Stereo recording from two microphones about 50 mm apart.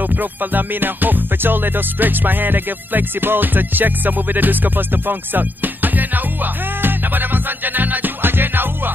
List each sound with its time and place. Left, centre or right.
0.0 s music: right